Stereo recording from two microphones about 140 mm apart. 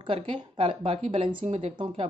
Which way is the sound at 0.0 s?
40° right (ahead or behind).